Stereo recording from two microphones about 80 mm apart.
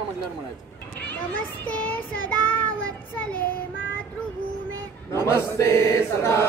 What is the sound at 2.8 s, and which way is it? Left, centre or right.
Speech, left.